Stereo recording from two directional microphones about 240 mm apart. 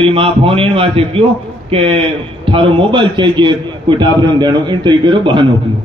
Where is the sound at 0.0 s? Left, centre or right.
Right.